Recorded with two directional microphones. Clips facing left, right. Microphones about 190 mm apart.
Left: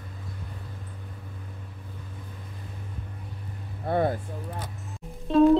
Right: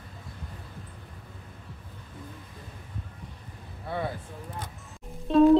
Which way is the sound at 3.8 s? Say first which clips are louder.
Left 7 dB; 50° left (ahead or behind).